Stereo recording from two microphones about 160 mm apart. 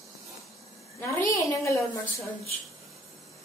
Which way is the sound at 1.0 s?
20° left (ahead or behind).